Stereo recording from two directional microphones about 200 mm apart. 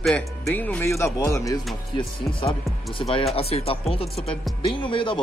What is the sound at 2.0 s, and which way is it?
Speech, 25° left (ahead or behind).